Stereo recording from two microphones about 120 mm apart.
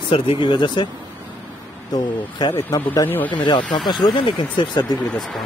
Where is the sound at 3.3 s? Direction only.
40° left (ahead or behind).